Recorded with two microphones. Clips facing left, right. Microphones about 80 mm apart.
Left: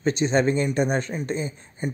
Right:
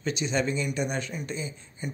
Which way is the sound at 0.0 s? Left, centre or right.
Left.